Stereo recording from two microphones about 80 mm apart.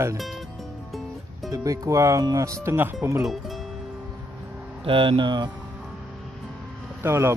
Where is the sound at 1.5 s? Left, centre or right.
Right.